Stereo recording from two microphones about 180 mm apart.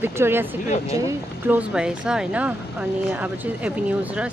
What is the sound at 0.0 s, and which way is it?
Speech, 10° right (ahead or behind).